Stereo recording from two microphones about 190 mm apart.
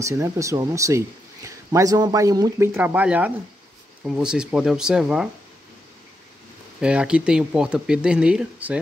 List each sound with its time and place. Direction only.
0.0 s speech: 15° right (ahead or behind)
6.8 s speech: 5° right (ahead or behind)